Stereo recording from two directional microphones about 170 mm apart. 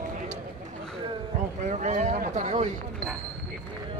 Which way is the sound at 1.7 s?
45° right (ahead or behind).